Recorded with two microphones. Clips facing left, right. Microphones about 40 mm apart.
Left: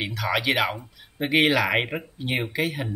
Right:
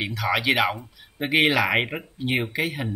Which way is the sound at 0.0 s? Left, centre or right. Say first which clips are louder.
Right 1 dB; centre.